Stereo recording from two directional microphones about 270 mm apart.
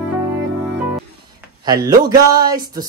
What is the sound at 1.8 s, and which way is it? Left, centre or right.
Music, centre.